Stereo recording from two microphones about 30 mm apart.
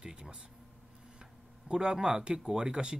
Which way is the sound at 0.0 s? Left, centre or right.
Right.